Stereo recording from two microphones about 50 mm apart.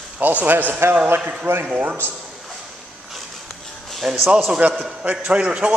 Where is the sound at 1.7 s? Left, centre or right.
Right.